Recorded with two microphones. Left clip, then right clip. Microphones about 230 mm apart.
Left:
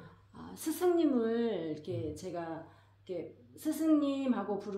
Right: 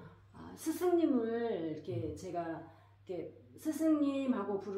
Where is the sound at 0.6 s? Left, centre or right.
Left.